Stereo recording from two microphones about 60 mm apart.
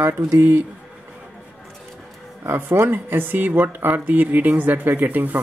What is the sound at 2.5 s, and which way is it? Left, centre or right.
Speech, right.